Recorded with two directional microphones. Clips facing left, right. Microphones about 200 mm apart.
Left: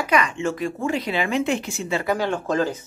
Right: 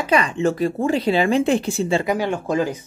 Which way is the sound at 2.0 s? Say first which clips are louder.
Right 2 dB; 15° right (ahead or behind).